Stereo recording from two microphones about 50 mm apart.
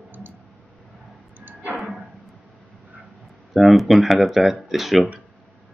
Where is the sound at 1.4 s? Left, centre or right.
Right.